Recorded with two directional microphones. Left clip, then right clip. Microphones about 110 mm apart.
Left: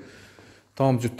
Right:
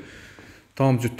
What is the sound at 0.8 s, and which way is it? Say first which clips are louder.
Speech: right 1 dB; 5° left (ahead or behind).